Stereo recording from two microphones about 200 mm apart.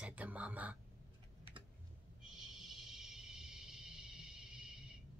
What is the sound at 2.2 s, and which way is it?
Music, centre (ahead or behind).